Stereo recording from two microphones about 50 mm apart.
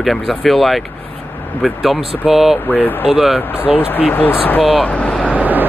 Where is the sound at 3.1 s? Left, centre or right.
Centre.